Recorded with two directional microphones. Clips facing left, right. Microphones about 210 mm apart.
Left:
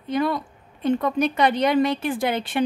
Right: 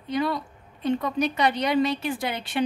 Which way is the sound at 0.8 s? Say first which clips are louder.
Left 3 dB; 55° left (ahead or behind).